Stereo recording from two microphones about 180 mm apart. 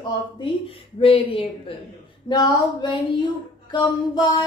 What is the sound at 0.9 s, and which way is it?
Speech, 30° left (ahead or behind).